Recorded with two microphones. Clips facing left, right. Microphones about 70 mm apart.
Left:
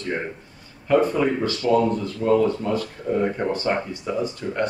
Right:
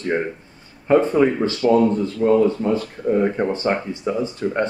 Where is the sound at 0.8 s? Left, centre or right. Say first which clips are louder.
Right 4 dB; right.